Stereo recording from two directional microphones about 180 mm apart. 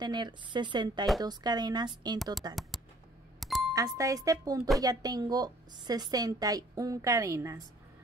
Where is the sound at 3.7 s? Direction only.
20° right (ahead or behind).